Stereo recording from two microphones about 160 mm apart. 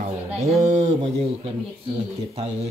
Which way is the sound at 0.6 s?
50° right (ahead or behind).